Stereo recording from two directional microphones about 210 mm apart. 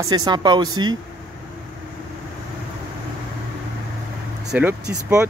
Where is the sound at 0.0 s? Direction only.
20° right (ahead or behind).